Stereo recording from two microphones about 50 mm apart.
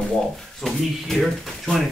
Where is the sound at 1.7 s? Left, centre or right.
Left.